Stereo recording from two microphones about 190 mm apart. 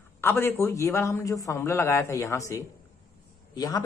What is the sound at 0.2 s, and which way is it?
A man's voice, 10° left (ahead or behind).